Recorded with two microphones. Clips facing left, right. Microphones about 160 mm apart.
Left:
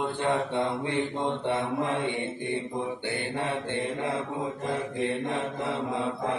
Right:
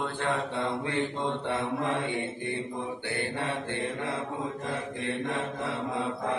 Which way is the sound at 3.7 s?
15° left (ahead or behind).